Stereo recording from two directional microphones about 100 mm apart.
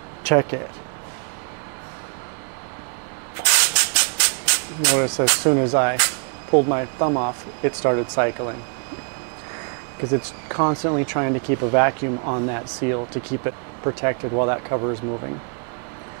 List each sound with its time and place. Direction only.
0.2 s speech: 20° right (ahead or behind)
3.4 s steam: 15° right (ahead or behind)
5.5 s speech: 30° right (ahead or behind)
10.5 s speech: 25° right (ahead or behind)